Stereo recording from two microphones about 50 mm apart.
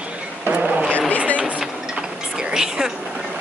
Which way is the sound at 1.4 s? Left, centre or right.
Right.